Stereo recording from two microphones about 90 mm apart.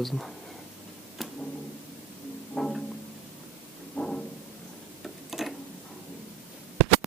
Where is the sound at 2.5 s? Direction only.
5° left (ahead or behind).